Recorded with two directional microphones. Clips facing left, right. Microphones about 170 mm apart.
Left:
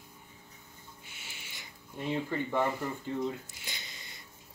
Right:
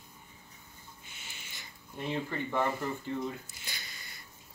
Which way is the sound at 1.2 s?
10° left (ahead or behind).